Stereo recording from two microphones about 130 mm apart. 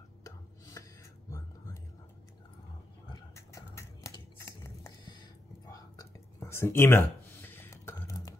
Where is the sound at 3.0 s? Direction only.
25° left (ahead or behind).